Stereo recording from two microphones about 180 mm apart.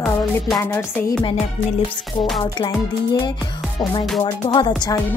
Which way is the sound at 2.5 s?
25° left (ahead or behind).